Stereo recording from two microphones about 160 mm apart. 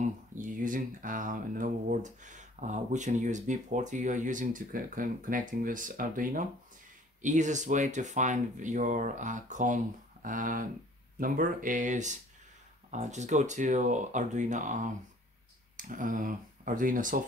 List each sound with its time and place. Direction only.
0.0 s speech: 55° right (ahead or behind)